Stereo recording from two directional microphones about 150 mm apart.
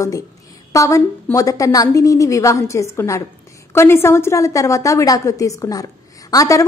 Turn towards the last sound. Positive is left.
turn(degrees=25)  # may be behind; listen again after turning